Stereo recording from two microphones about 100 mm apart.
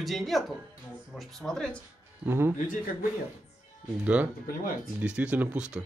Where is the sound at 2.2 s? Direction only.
25° right (ahead or behind).